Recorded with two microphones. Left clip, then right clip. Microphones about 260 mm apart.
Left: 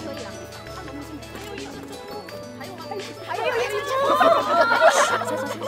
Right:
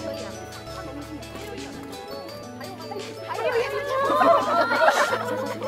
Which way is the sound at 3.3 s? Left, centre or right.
Left.